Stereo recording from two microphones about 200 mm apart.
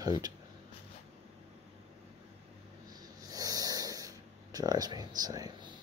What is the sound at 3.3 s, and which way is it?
Speech, 20° right (ahead or behind).